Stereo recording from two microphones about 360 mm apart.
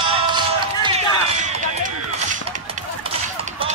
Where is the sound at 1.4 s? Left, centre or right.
Right.